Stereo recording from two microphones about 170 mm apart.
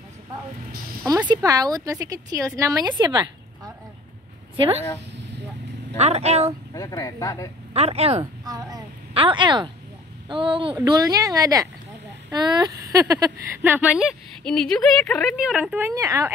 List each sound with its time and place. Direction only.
1.3 s a woman's voice: 20° right (ahead or behind)
5.9 s speech: 40° right (ahead or behind)
6.7 s speech: 20° left (ahead or behind)
7.7 s speech: 35° right (ahead or behind)
8.5 s a woman's voice: 20° right (ahead or behind)